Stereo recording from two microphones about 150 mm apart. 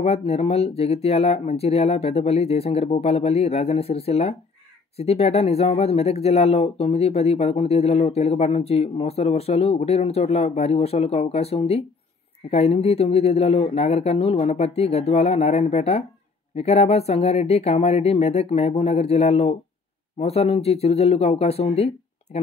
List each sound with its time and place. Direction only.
0.0 s speech: 40° left (ahead or behind)